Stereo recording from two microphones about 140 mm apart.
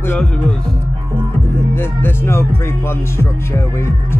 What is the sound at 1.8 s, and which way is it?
Speech, 15° left (ahead or behind).